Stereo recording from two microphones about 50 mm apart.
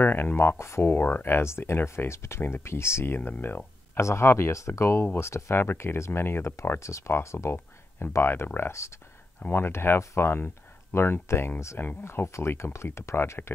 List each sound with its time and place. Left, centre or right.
0.0 s a sound: left
0.6 s speech: left
0.9 s speech: left
2.0 s speech: left
3.2 s speech: left
4.0 s speech: left
5.2 s speech: left
6.8 s speech: left
7.2 s speech: left
8.7 s speech: left
9.5 s speech: left